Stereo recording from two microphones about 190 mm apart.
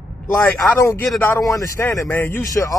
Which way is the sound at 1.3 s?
15° left (ahead or behind).